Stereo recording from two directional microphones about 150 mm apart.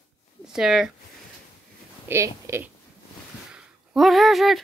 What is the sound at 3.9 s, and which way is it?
Speech, centre (ahead or behind).